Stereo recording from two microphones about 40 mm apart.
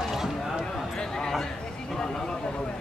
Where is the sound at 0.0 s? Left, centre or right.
Centre.